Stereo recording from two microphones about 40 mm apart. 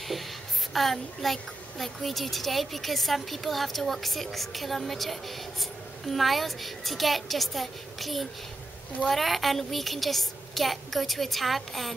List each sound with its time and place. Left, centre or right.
0.7 s a child's voice: centre